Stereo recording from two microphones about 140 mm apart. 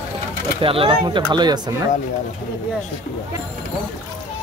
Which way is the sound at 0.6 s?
40° right (ahead or behind).